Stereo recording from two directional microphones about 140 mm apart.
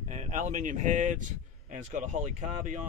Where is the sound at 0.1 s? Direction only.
60° right (ahead or behind).